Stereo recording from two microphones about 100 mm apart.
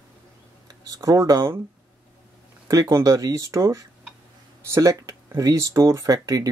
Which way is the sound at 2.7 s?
35° right (ahead or behind).